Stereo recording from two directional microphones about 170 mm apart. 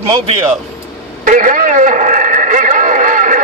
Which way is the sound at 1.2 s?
50° right (ahead or behind).